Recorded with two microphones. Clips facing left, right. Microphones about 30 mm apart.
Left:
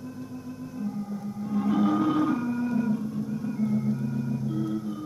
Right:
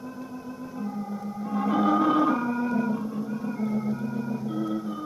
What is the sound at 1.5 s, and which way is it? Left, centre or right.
Music, centre.